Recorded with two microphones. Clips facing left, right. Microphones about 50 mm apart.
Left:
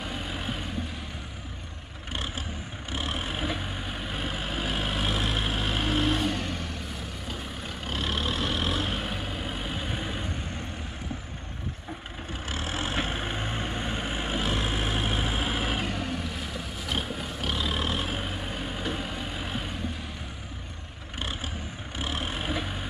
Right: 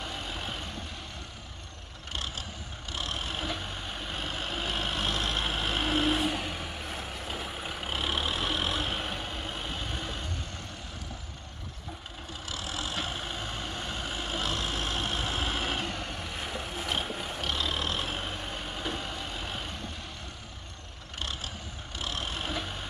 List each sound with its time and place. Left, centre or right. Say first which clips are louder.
0.0 s vehicle: left 3 dB; centre
2.9 s vehicle: left 3 dB; centre
12.4 s vehicle: left 4 dB; left; by 19.8 s centre
21.9 s vehicle: left 3 dB; centre